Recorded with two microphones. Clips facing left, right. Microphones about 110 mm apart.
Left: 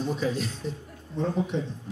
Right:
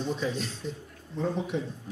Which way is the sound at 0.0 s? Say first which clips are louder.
Left 3 dB; 5° left (ahead or behind).